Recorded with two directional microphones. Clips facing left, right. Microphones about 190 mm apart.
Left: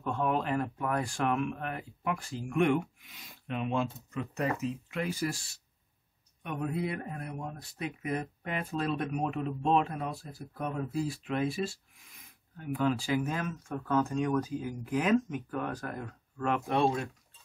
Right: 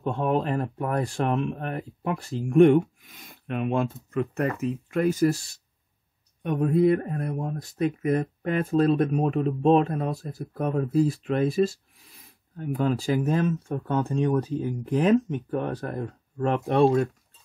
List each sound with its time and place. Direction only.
0.0 s speech: 30° right (ahead or behind)
6.6 s a man's voice: 50° right (ahead or behind)